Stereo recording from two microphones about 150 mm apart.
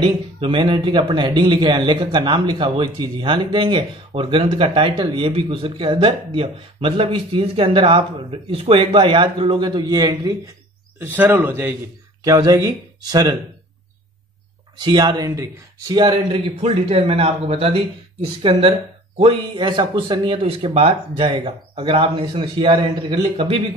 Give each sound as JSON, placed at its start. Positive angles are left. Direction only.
{"t": 0.0, "sound": "speech", "side_deg": -35}
{"t": 11.0, "sound": "a man's voice", "side_deg": -10}
{"t": 12.3, "sound": "speech", "side_deg": -25}
{"t": 14.8, "sound": "speech", "side_deg": -30}